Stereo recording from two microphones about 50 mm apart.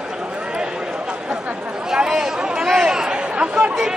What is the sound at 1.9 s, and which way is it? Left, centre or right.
Chatter, centre.